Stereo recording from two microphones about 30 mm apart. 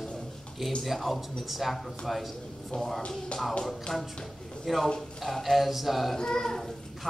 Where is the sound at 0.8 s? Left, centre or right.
Centre.